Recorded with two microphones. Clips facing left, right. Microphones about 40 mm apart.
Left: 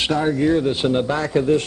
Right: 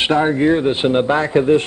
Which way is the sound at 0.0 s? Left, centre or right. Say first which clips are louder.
Right 4 dB; right.